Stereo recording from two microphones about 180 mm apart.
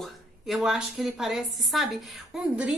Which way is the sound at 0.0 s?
Centre (ahead or behind).